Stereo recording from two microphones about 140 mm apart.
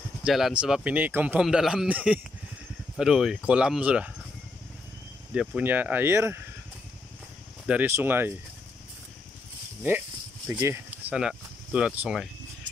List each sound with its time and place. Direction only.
0.2 s speech: 5° right (ahead or behind)
5.3 s speech: 5° right (ahead or behind)
7.6 s speech: 15° right (ahead or behind)
10.5 s speech: 15° right (ahead or behind)